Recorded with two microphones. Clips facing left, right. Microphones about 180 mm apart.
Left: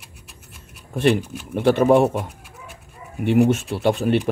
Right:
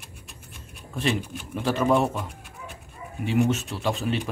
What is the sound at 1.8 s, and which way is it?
Speech, 50° left (ahead or behind).